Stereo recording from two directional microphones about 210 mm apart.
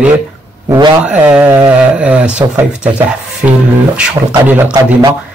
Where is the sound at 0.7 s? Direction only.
20° right (ahead or behind).